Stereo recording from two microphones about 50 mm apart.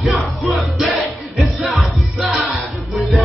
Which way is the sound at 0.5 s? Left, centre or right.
Centre.